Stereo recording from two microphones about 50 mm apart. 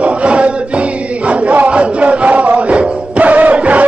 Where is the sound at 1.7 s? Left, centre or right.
Right.